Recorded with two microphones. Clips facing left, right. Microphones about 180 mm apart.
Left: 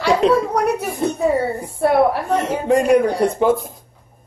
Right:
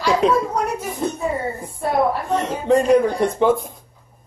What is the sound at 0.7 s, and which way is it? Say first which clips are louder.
Speech: left 6 dB; 65° left (ahead or behind).